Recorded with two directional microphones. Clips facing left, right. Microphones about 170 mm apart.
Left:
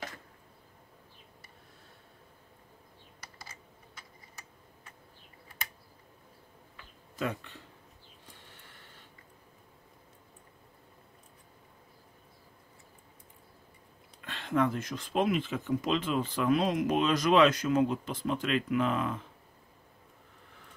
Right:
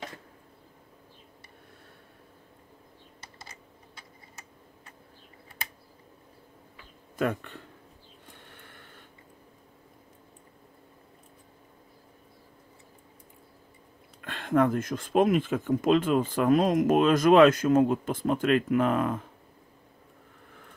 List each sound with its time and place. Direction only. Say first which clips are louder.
7.2 s speech: right 6 dB; 55° right (ahead or behind)
8.4 s a sound: right 4 dB; 55° right (ahead or behind)
14.2 s speech: right 5 dB; 50° right (ahead or behind)